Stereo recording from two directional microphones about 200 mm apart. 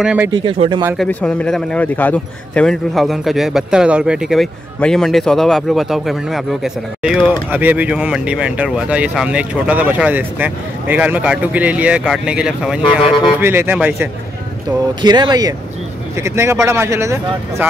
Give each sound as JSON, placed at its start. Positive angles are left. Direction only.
{"t": 0.0, "sound": "speech", "side_deg": -5}
{"t": 0.3, "sound": "speech", "side_deg": -25}
{"t": 0.9, "sound": "a man's voice", "side_deg": 5}
{"t": 15.0, "sound": "speech", "side_deg": -20}